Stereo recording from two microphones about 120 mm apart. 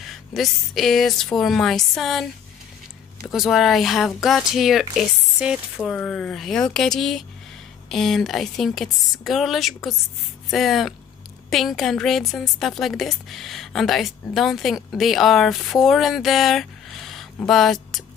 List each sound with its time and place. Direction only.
0.0 s a woman's voice: centre (ahead or behind)
3.3 s a woman's voice: centre (ahead or behind)